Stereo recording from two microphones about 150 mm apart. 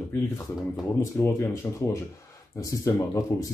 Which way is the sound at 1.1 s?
20° left (ahead or behind).